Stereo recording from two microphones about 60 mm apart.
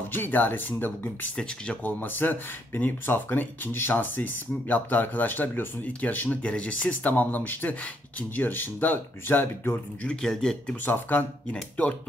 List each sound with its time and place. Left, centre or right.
0.1 s speech: left
1.3 s speech: centre
1.8 s speech: left
10.4 s speech: centre
10.9 s speech: left